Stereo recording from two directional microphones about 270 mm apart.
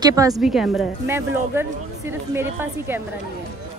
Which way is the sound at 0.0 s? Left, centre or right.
Centre.